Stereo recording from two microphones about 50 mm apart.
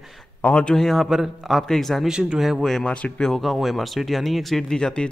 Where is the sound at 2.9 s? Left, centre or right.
Left.